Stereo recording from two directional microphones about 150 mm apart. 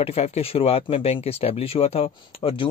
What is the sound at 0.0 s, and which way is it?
Speech, 40° left (ahead or behind).